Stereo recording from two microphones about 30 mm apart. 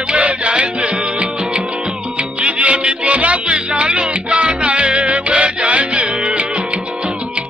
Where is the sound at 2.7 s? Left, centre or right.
Right.